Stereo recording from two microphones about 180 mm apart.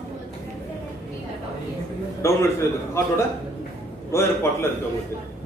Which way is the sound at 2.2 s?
15° left (ahead or behind).